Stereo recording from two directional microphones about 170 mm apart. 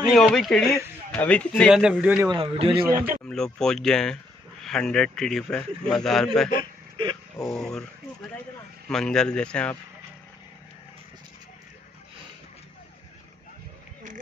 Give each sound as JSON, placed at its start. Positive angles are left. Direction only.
{"t": 0.1, "sound": "a man's voice", "side_deg": 0}
{"t": 1.6, "sound": "a man's voice", "side_deg": -5}
{"t": 2.2, "sound": "a man's voice", "side_deg": -30}
{"t": 2.9, "sound": "a man's voice", "side_deg": -15}
{"t": 3.3, "sound": "a man's voice", "side_deg": 5}
{"t": 6.5, "sound": "a sound", "side_deg": -25}
{"t": 7.4, "sound": "a man's voice", "side_deg": 5}
{"t": 8.8, "sound": "a man's voice", "side_deg": 5}